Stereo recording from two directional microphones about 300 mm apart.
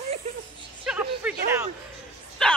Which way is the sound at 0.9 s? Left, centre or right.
Centre.